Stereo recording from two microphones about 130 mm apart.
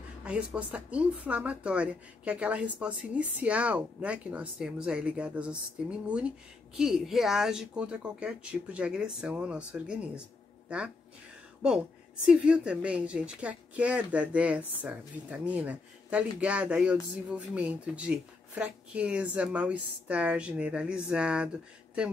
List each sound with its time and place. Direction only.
0.2 s speech: 10° right (ahead or behind)
12.3 s speech: 5° right (ahead or behind)